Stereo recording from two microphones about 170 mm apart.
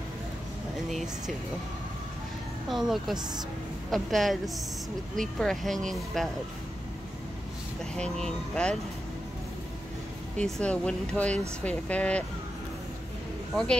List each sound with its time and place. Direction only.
0.8 s speech: centre (ahead or behind)
2.7 s speech: centre (ahead or behind)
7.9 s speech: 5° left (ahead or behind)
10.3 s speech: 5° left (ahead or behind)
13.5 s speech: 5° left (ahead or behind)